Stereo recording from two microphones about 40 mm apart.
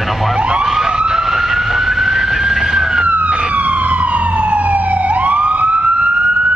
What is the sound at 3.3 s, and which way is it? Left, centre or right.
Emergency vehicle, right.